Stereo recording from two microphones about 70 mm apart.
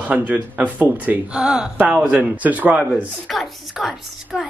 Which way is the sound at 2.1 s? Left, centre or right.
Right.